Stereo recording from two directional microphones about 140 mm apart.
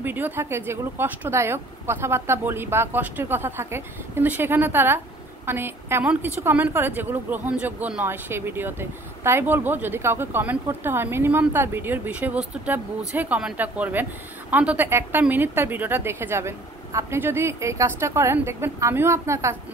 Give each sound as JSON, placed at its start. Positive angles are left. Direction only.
{"t": 0.0, "sound": "a woman's voice", "side_deg": -15}